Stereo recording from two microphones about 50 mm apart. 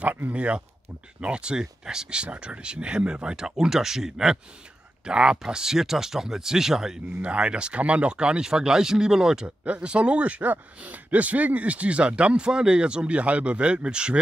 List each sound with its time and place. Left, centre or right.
0.3 s speech: right
2.2 s speech: right; by 7.0 s centre
7.2 s speech: right
9.7 s speech: right